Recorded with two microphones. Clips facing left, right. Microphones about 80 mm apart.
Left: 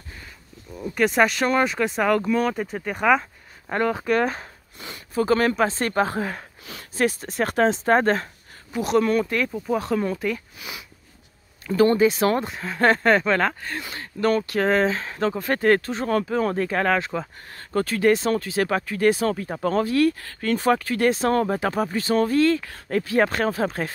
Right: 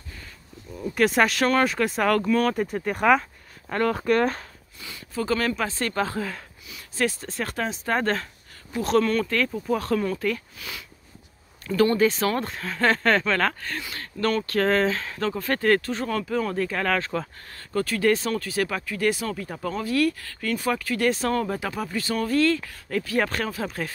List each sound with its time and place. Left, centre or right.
0.7 s speech: centre
2.5 s speech: centre
3.6 s speech: centre
4.7 s speech: left
6.6 s a sound: left
7.0 s speech: left
17.6 s speech: left
23.5 s speech: left